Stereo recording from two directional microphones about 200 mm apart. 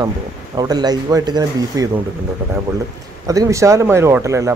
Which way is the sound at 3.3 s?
15° right (ahead or behind).